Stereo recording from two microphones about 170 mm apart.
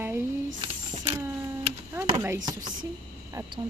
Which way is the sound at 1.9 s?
15° right (ahead or behind).